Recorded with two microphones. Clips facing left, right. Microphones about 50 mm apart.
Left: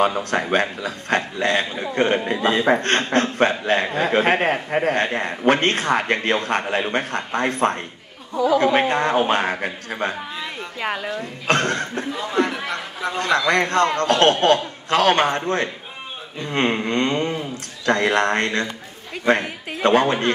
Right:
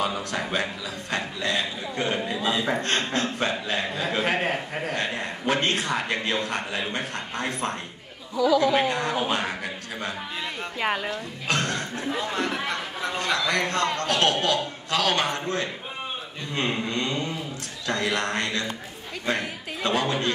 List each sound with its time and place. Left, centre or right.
0.0 s a man's voice: left
10.4 s speech: centre
11.4 s a man's voice: left
12.5 s a man's voice: centre
13.5 s a man's voice: left